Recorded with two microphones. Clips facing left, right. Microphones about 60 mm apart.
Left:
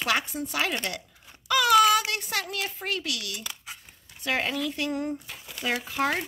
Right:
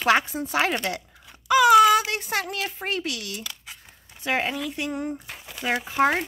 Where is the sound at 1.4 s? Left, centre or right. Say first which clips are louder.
Right 5 dB; centre.